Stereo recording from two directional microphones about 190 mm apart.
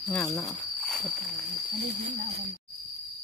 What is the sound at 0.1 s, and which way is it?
Speech, 15° left (ahead or behind).